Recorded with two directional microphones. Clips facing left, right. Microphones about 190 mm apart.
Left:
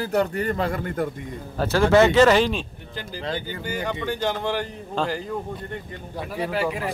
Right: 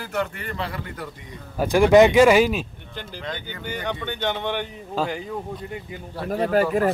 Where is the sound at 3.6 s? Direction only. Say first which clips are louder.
Even; 5° left (ahead or behind).